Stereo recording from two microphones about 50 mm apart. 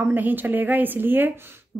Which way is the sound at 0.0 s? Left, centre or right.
Right.